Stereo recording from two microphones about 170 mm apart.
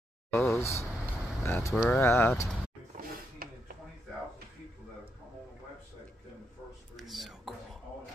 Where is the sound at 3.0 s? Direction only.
60° right (ahead or behind).